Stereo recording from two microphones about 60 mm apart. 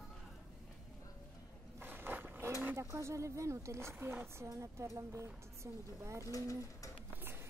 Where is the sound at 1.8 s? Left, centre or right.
Right.